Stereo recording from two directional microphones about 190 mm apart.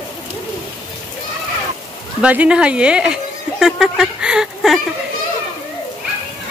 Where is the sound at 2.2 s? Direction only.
5° right (ahead or behind).